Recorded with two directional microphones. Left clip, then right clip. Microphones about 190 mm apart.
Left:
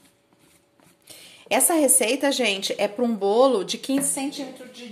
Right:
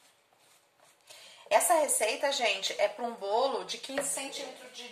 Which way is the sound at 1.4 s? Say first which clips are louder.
Left 4 dB; 55° left (ahead or behind).